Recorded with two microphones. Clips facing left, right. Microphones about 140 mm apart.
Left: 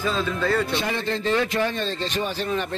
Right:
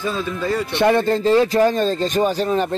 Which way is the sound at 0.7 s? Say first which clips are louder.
Right 10 dB; 55° right (ahead or behind).